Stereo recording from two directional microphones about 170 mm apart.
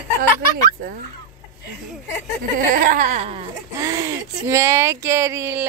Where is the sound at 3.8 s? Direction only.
20° right (ahead or behind).